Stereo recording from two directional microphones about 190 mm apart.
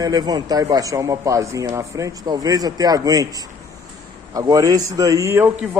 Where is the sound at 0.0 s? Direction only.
20° right (ahead or behind).